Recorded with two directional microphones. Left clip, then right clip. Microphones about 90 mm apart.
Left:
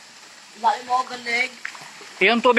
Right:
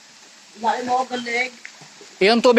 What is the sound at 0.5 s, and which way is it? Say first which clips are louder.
Speech: even; 30° right (ahead or behind).